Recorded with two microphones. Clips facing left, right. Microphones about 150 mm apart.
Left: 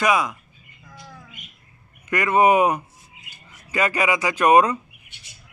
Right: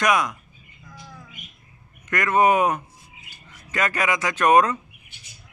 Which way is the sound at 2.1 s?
10° left (ahead or behind).